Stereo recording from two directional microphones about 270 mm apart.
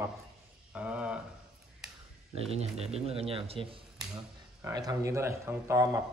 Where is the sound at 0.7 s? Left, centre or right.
Centre.